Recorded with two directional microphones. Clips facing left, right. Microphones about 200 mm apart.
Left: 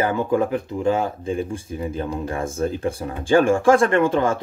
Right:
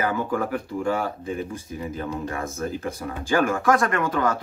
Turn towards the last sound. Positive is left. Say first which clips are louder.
# left 5 dB
turn(degrees=25)  # may be behind; listen again after turning